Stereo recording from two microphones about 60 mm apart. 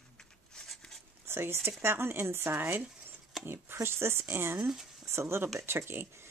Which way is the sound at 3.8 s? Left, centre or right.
Right.